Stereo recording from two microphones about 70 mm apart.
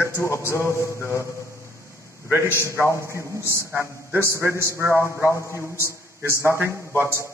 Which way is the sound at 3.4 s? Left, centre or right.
Right.